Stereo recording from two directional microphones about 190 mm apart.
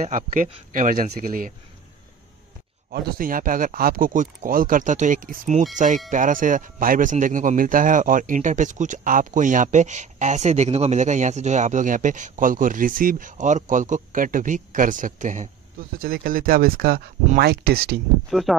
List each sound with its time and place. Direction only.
0.0 s speech: 40° right (ahead or behind)
2.9 s speech: 50° right (ahead or behind)
18.3 s speech: centre (ahead or behind)